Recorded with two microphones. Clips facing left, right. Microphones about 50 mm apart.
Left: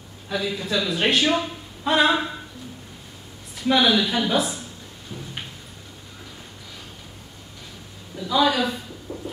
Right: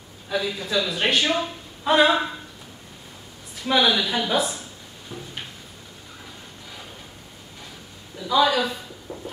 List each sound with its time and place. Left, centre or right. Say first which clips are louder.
0.3 s speech: even; centre
3.6 s speech: left 1 dB; centre
5.1 s a sound: even; centre
8.2 s a woman's voice: even; centre
9.1 s heart murmur: left 2 dB; right